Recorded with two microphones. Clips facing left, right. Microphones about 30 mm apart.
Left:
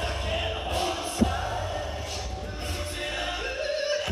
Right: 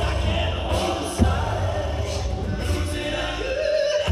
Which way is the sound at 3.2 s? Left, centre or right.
Right.